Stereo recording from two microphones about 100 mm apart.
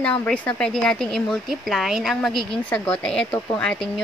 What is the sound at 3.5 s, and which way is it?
Speech, 15° left (ahead or behind).